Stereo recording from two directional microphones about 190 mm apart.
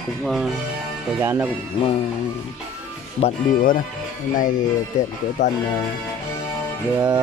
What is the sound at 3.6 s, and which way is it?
Speech, 45° left (ahead or behind).